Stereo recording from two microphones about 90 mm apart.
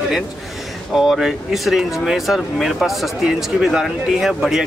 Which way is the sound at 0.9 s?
5° right (ahead or behind).